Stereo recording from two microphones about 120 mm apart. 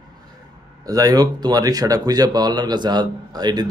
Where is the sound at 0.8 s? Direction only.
30° right (ahead or behind).